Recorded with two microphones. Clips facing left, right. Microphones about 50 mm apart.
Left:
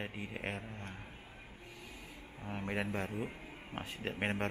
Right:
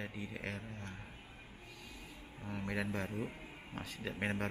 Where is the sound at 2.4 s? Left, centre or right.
Centre.